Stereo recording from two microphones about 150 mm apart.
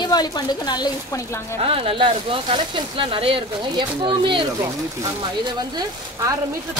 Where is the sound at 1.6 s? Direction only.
40° right (ahead or behind).